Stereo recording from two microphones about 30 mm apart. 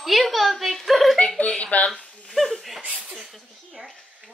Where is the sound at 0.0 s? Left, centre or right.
Centre.